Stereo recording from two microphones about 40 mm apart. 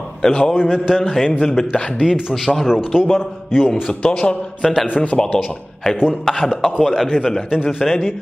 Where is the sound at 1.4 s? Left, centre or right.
Centre.